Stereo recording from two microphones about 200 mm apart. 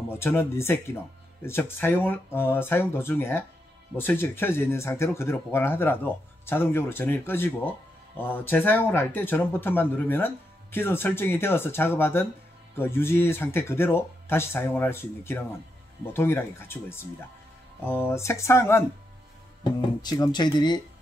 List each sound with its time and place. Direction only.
0.1 s speech: 10° left (ahead or behind)
20.0 s speech: 20° left (ahead or behind)